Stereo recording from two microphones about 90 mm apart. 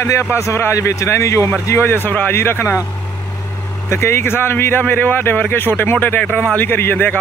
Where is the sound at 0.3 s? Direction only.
30° left (ahead or behind).